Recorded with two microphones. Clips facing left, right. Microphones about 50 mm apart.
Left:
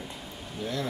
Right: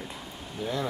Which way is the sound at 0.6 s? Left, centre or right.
Centre.